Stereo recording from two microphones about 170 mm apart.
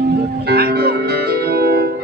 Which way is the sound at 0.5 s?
65° right (ahead or behind).